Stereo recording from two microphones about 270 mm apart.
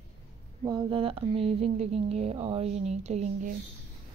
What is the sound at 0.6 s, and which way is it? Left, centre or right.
Speech, centre.